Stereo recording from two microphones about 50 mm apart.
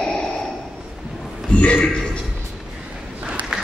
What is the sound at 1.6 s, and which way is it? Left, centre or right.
Speech, left.